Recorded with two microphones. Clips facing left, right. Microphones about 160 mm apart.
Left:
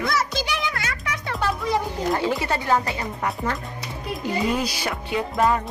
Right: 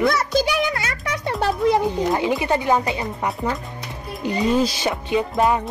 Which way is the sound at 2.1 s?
20° right (ahead or behind).